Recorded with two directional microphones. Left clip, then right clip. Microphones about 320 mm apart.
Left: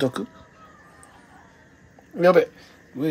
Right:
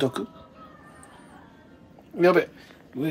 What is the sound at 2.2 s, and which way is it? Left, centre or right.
Speech, left.